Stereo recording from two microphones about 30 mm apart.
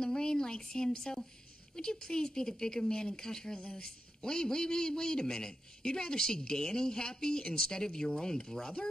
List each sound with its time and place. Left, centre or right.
0.0 s a man's voice: left